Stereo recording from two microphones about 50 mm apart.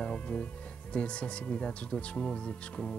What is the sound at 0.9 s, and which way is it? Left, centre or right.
Speech, left.